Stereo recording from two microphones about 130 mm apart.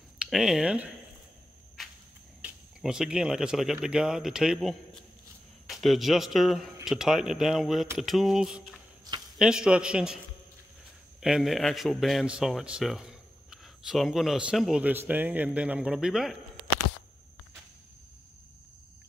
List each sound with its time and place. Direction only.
0.2 s speech: 5° right (ahead or behind)
2.4 s speech: 5° right (ahead or behind)